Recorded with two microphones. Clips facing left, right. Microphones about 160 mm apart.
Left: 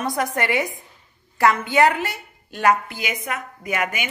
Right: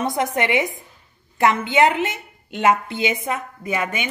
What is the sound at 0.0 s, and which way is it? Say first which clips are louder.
A woman's voice: right 2 dB; 25° right (ahead or behind).